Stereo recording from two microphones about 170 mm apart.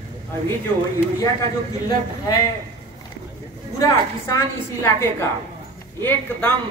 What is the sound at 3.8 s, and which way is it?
A woman's voice, 20° left (ahead or behind).